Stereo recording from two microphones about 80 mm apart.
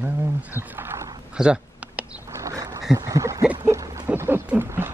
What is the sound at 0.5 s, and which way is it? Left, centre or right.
Wild animals, right.